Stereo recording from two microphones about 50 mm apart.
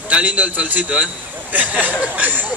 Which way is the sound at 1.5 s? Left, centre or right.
Right.